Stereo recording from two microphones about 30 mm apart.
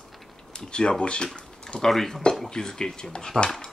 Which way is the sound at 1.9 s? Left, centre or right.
Centre.